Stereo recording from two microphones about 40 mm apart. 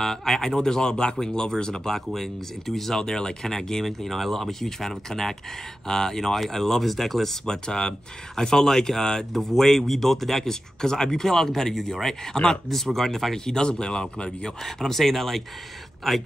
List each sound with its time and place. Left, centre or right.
0.0 s speech: centre
3.0 s speech: centre
7.4 s speech: centre
14.6 s speech: centre